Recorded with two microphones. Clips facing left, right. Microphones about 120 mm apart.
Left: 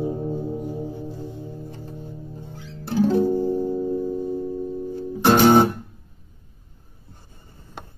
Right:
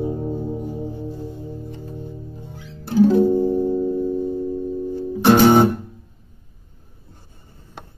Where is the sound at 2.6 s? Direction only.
Centre (ahead or behind).